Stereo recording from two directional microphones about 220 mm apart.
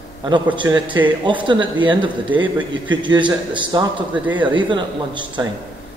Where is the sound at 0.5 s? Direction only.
20° right (ahead or behind).